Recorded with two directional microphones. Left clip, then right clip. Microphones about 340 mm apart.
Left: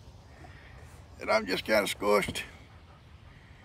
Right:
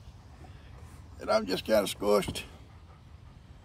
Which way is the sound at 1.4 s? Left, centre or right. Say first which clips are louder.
Even; centre.